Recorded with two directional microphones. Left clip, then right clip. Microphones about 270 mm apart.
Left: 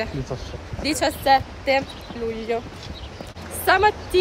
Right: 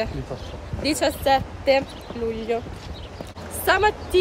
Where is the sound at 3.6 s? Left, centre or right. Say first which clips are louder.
Left 2 dB; centre.